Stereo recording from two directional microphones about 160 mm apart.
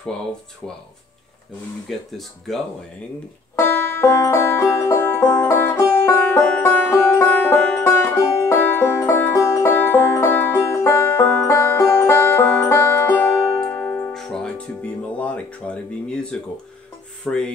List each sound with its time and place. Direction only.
1.9 s speech: centre (ahead or behind)
3.5 s music: 15° left (ahead or behind)
17.3 s speech: centre (ahead or behind)